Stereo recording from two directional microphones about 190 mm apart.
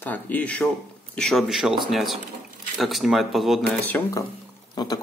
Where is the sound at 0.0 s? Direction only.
10° left (ahead or behind).